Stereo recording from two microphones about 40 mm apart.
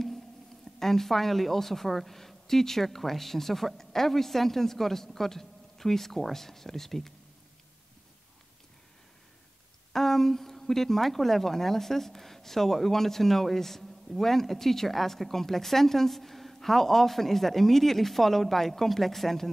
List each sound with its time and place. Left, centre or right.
0.7 s speech: centre
9.9 s speech: centre